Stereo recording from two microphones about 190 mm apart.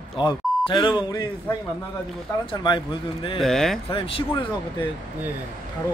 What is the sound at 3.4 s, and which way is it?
Speech, centre (ahead or behind).